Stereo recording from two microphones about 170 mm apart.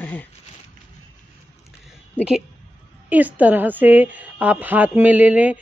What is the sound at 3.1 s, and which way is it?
A woman's voice, 10° right (ahead or behind).